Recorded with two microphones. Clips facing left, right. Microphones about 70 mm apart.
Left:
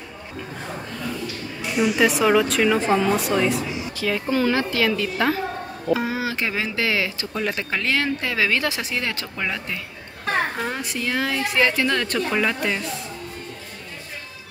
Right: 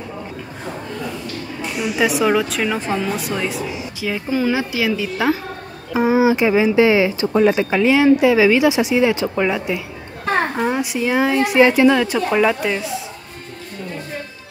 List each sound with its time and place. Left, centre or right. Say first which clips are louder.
1.9 s speech: right 2 dB; centre